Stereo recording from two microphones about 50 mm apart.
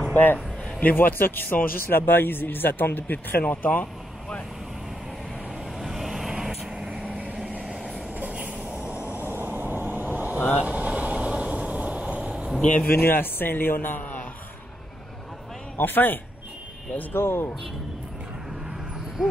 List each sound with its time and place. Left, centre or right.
0.1 s a man's voice: left
3.4 s speech: left
5.8 s vehicle: centre
7.1 s vehicle: right
7.6 s train: centre
8.2 s vehicle: right
9.0 s vehicle: right
12.8 s a man's voice: left
15.8 s speech: left
17.1 s a man's voice: left